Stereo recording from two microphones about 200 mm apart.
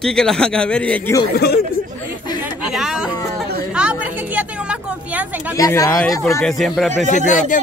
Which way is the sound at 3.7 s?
5° right (ahead or behind).